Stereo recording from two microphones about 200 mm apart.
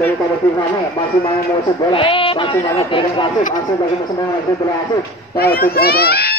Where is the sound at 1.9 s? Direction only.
25° left (ahead or behind).